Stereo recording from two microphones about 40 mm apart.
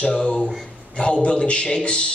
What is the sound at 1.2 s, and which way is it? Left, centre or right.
Speech, left.